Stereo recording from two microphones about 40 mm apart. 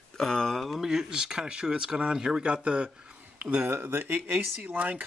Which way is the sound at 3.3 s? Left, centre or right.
Right.